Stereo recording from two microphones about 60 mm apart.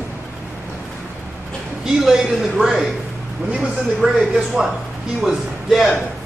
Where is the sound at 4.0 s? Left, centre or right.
Centre.